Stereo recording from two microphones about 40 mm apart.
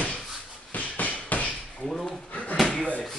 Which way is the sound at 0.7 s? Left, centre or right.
Left.